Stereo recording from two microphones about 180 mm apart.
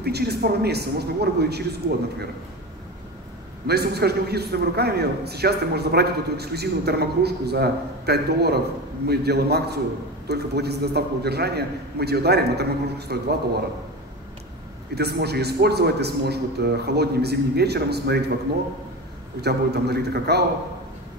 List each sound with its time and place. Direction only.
0.0 s a man's voice: 65° right (ahead or behind)
3.6 s a man's voice: 65° right (ahead or behind)
15.0 s a man's voice: 65° right (ahead or behind)
19.4 s a man's voice: 65° right (ahead or behind)